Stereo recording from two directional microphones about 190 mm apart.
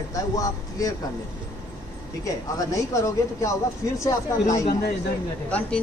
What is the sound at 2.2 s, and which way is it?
Speech, 20° left (ahead or behind).